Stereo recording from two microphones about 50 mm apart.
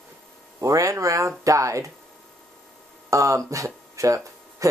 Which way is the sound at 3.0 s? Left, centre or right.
Right.